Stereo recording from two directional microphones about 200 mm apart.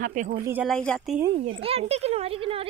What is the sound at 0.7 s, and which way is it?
Speech, 5° left (ahead or behind).